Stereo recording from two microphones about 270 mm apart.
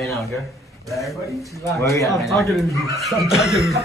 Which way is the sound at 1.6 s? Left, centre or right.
Centre.